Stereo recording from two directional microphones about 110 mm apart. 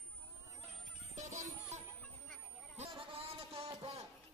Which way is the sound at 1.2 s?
90° right.